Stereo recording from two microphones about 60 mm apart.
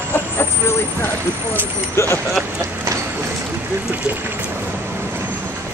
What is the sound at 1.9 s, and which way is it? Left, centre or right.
Speech, left.